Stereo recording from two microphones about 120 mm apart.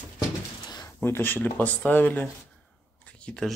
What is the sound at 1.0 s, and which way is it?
Speech, 20° left (ahead or behind).